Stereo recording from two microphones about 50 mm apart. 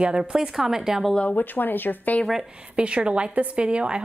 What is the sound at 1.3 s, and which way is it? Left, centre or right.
Speech, left.